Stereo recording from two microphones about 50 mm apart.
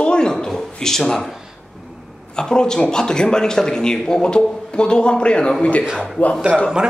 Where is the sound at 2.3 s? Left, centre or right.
Centre.